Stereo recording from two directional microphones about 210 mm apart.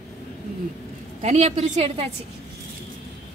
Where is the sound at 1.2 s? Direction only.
30° right (ahead or behind).